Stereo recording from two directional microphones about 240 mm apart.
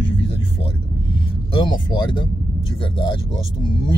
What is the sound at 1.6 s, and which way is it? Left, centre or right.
Speech, centre.